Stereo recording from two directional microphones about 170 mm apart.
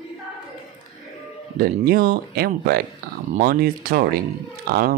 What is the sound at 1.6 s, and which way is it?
Speech, 60° right (ahead or behind).